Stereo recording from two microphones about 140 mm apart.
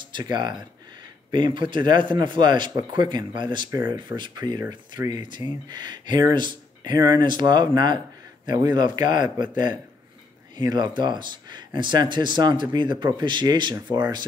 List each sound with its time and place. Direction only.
0.3 s speech: 30° right (ahead or behind)
10.6 s speech: 30° right (ahead or behind)